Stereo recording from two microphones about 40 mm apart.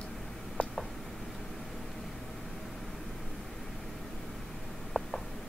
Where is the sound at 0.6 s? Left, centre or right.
Left.